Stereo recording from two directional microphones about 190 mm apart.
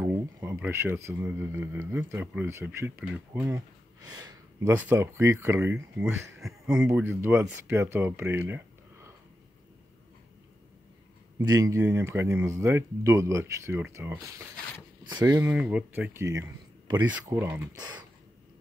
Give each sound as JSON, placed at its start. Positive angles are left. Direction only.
{"t": 0.0, "sound": "speech", "side_deg": -10}
{"t": 11.3, "sound": "speech", "side_deg": -20}
{"t": 15.6, "sound": "speech", "side_deg": -5}